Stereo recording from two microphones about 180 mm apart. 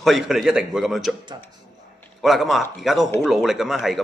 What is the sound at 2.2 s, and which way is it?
Speech, centre (ahead or behind).